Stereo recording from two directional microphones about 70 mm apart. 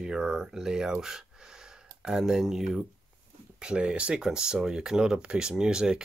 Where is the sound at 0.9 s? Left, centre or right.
Centre.